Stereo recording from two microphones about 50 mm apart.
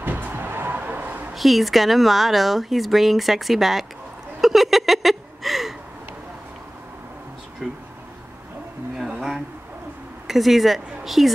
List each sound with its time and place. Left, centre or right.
0.0 s music: right
1.3 s a woman's voice: centre
4.4 s a sound: centre
7.6 s bee: centre
8.9 s a sound: centre
10.2 s speech: centre